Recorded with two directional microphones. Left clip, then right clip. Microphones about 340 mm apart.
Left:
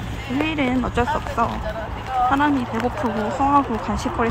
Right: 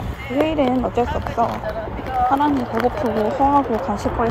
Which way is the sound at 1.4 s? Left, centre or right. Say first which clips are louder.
Right 3 dB; centre.